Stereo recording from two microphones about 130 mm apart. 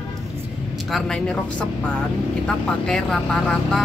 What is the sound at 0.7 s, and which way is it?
Speech, centre (ahead or behind).